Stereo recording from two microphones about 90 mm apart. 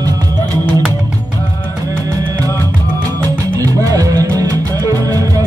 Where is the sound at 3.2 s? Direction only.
40° right (ahead or behind).